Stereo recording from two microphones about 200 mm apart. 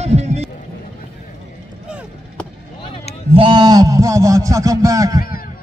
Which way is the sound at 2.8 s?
25° left (ahead or behind).